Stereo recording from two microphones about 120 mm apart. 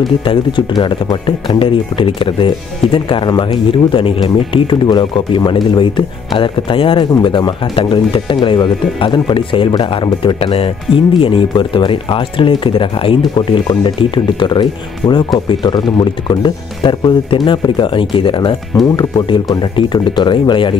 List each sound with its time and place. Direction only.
0.2 s speech: 45° left (ahead or behind)
18.9 s speech: 35° left (ahead or behind)